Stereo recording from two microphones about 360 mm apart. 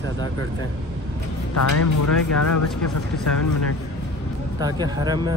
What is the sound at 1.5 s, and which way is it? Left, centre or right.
Speech, left.